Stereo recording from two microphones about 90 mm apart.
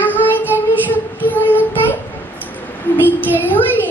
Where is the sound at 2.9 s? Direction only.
20° left (ahead or behind).